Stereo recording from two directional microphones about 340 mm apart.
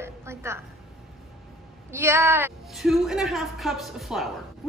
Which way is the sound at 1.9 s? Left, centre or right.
Centre.